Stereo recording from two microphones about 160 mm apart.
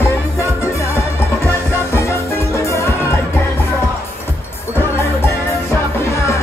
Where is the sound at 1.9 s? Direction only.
15° left (ahead or behind).